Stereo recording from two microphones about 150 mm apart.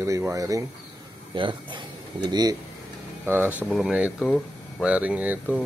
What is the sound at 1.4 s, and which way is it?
Speech, 35° right (ahead or behind).